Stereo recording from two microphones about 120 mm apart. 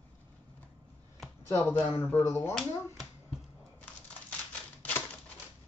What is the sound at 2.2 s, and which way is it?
Speech, 25° left (ahead or behind).